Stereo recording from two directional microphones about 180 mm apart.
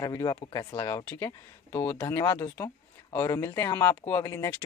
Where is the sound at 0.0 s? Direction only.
20° left (ahead or behind).